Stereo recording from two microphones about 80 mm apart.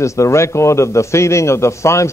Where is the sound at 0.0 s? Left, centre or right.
Left.